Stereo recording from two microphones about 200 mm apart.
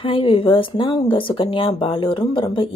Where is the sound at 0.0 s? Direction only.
25° left (ahead or behind).